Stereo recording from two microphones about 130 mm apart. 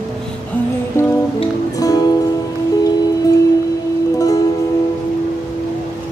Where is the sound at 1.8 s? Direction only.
30° left (ahead or behind).